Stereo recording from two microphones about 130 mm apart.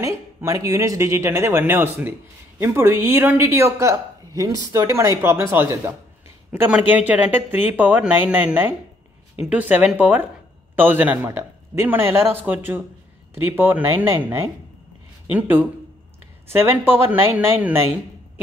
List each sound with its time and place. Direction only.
0.0 s speech: 25° right (ahead or behind)